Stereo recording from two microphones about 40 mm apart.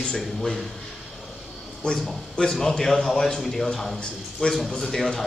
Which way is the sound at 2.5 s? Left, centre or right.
Centre.